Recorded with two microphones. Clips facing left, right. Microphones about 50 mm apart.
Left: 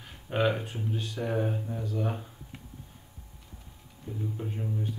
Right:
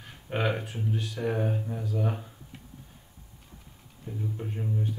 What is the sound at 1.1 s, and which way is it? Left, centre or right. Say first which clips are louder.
Speech: even; centre.